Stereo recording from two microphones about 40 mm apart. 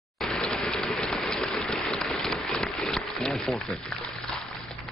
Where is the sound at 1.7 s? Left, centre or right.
Centre.